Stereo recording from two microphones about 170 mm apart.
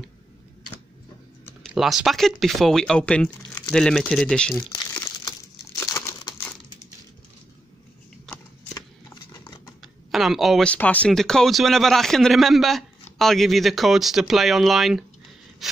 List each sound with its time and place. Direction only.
1.7 s speech: 5° right (ahead or behind)
4.6 s crumpling: 20° left (ahead or behind)
8.7 s horse: 20° left (ahead or behind)
9.8 s speech: centre (ahead or behind)
15.6 s sawing: centre (ahead or behind)